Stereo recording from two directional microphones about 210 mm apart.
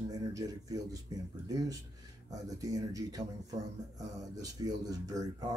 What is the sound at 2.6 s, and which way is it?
Speech, 15° right (ahead or behind).